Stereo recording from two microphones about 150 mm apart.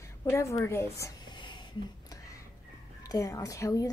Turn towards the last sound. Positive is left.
turn(degrees=20)  # may be behind; listen again after turning